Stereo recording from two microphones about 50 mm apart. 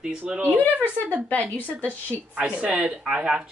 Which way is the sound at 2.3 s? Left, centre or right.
Right.